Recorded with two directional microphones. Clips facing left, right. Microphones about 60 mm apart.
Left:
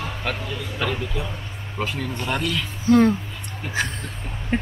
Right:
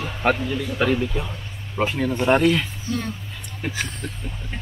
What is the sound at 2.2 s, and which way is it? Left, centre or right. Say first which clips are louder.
Speech: right 9 dB; right.